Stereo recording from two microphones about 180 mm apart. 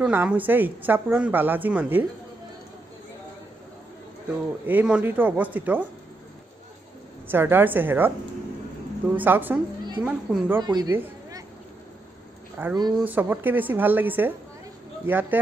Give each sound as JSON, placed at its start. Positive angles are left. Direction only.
{"t": 0.0, "sound": "a woman's voice", "side_deg": -10}
{"t": 4.6, "sound": "a woman's voice", "side_deg": -5}
{"t": 7.2, "sound": "a woman's voice", "side_deg": -10}
{"t": 9.1, "sound": "a woman's voice", "side_deg": -10}
{"t": 10.6, "sound": "speech", "side_deg": -25}
{"t": 10.9, "sound": "a sound", "side_deg": -10}
{"t": 12.6, "sound": "a woman's voice", "side_deg": -10}